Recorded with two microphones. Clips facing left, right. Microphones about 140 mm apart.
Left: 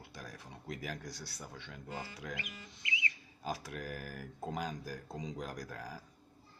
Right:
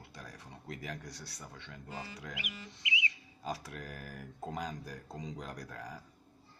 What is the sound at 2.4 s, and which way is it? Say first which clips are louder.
Speech: right 2 dB; 15° right (ahead or behind).